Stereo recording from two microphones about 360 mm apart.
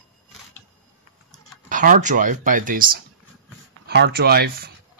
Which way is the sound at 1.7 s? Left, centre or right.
Right.